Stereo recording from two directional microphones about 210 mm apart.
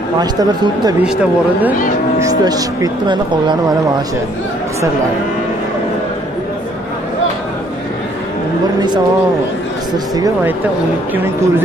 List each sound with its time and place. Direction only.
0.2 s speech: 20° right (ahead or behind)
1.0 s speech: 5° right (ahead or behind)
2.1 s speech: 15° right (ahead or behind)
10.1 s speech: 15° right (ahead or behind)